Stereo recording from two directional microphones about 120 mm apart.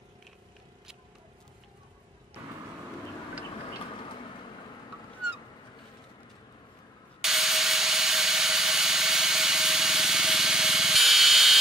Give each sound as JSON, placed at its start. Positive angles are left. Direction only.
{"t": 3.9, "sound": "vehicle", "side_deg": 45}
{"t": 7.2, "sound": "jet engine", "side_deg": -5}